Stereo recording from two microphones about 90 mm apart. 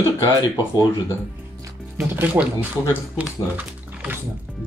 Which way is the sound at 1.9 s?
20° right (ahead or behind).